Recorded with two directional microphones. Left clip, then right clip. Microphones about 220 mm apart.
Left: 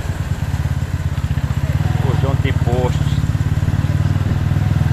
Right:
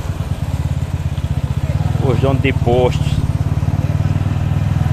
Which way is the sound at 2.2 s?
45° right (ahead or behind).